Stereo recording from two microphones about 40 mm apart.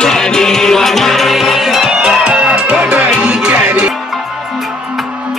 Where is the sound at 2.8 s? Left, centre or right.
Right.